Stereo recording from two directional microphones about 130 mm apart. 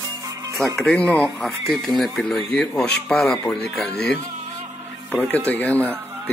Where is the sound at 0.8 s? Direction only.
10° left (ahead or behind).